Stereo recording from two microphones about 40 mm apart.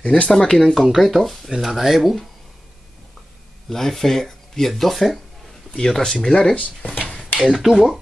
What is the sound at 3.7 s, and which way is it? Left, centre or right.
Speech, centre.